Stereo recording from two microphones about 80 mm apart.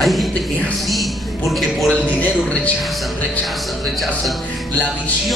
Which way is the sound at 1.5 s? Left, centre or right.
Centre.